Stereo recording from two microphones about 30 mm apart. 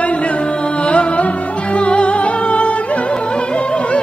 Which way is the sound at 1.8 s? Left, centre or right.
Left.